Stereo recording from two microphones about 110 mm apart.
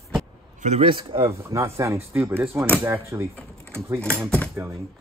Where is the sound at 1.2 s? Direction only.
25° right (ahead or behind).